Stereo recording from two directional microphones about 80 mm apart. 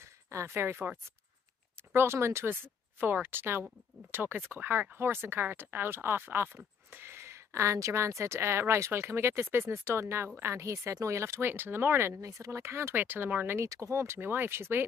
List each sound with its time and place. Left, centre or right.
0.0 s speech: right
2.0 s speech: right
13.7 s speech: right